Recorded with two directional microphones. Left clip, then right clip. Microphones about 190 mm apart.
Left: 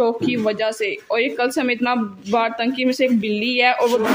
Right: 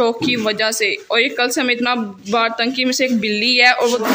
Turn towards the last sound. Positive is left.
turn(degrees=0)  # may be behind; listen again after turning